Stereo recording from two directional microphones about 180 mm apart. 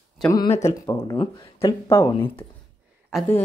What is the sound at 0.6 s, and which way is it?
Speech, 20° left (ahead or behind).